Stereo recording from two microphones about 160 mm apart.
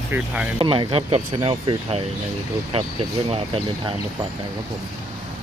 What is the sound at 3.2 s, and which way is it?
Speech, 35° right (ahead or behind).